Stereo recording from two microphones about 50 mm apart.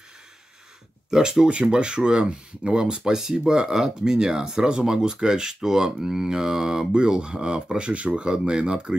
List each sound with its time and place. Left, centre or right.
1.1 s speech: centre